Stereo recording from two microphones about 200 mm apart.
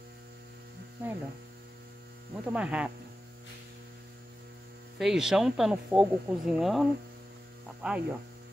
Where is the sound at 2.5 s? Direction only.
5° right (ahead or behind).